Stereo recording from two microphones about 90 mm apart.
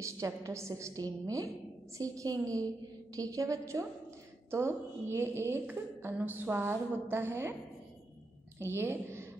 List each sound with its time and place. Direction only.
0.0 s a woman's voice: 35° right (ahead or behind)
8.5 s a woman's voice: 25° right (ahead or behind)